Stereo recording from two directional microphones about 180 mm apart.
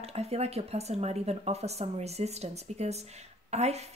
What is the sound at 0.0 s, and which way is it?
Speech, 35° right (ahead or behind).